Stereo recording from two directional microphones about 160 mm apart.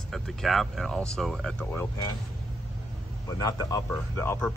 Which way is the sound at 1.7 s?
15° left (ahead or behind).